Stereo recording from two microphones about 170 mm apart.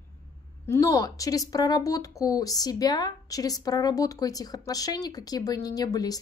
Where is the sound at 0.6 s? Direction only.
15° left (ahead or behind).